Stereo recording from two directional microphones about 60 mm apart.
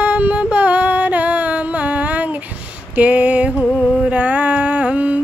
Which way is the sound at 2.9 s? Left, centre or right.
Right.